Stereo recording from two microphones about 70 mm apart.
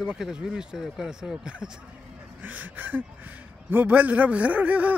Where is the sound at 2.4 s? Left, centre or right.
Right.